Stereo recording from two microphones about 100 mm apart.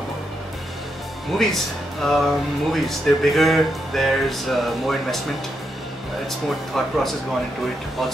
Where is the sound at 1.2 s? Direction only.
Centre (ahead or behind).